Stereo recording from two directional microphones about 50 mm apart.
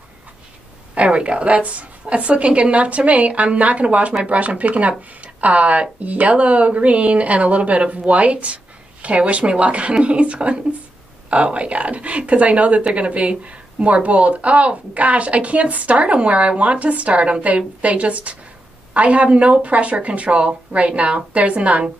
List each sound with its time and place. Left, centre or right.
0.9 s speech: right